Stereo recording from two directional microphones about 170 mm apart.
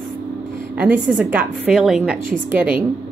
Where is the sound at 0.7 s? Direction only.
5° right (ahead or behind).